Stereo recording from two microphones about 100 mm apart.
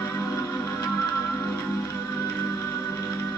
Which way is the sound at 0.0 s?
25° left (ahead or behind).